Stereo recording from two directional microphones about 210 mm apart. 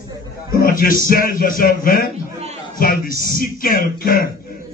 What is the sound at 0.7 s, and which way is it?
Speech, 45° left (ahead or behind).